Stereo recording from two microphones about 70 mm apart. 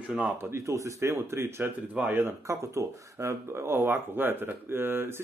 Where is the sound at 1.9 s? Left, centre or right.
Centre.